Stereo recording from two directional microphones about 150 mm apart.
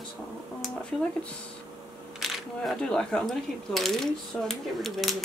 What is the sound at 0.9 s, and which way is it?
Speech, 5° left (ahead or behind).